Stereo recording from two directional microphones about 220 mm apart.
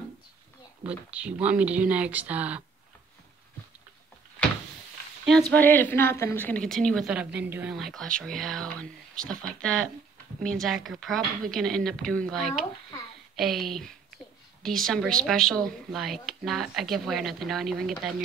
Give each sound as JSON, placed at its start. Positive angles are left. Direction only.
{"t": 0.8, "sound": "speech", "side_deg": -5}
{"t": 5.5, "sound": "a woman's voice", "side_deg": 10}
{"t": 9.1, "sound": "speech", "side_deg": -40}
{"t": 9.6, "sound": "a woman's voice", "side_deg": 5}